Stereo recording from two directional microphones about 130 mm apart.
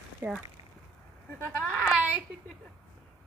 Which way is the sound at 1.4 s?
5° left (ahead or behind).